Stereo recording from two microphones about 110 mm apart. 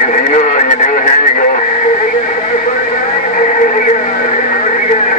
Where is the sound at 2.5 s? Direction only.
90° left.